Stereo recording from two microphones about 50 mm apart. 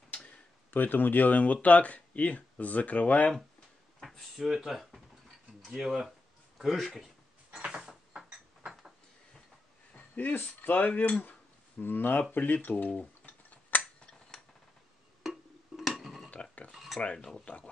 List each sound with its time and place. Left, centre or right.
0.1 s tick-tock: left
0.7 s speech: left
4.4 s speech: centre
7.5 s a sound: centre
10.1 s speech: left
13.2 s a sound: left
15.2 s a sound: centre
16.3 s cutlery: left
16.7 s cutlery: centre
17.0 s speech: left